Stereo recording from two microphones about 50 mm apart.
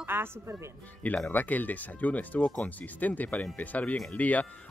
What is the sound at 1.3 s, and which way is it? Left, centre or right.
Speech, left.